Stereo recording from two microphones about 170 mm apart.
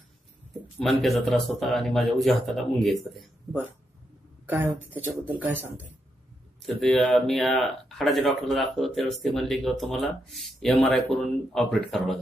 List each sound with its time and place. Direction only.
0.7 s speech: centre (ahead or behind)
4.7 s speech: 10° right (ahead or behind)
6.6 s speech: centre (ahead or behind)